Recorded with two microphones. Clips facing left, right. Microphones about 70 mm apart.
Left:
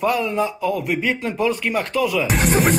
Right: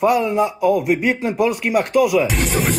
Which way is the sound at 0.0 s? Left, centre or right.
Centre.